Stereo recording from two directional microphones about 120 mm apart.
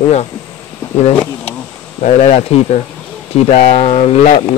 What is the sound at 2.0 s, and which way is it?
Speech, 65° left (ahead or behind).